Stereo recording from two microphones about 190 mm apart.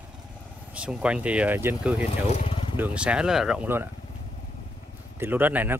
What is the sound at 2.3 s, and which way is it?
Vehicle, 30° left (ahead or behind).